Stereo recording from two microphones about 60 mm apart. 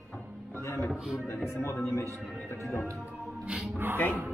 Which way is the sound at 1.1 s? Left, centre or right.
Left.